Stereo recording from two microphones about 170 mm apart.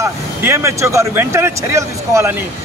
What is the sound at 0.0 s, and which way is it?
A man's voice, 15° right (ahead or behind).